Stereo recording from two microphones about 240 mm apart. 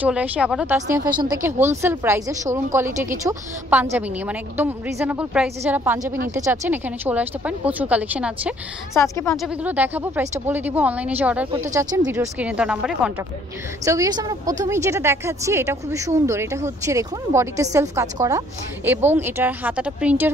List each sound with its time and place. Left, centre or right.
0.0 s a woman's voice: centre
8.9 s a woman's voice: centre
9.4 s a woman's voice: centre
13.8 s a woman's voice: centre